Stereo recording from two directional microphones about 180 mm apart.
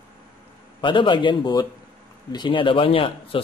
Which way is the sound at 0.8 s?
25° left (ahead or behind).